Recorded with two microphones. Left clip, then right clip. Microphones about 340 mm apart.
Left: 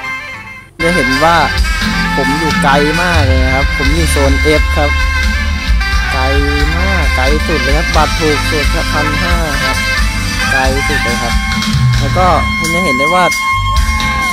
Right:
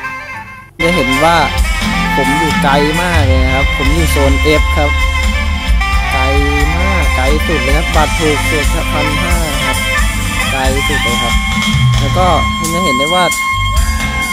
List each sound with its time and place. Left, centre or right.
0.8 s speech: centre
6.9 s speech: centre
10.5 s speech: centre
12.2 s speech: centre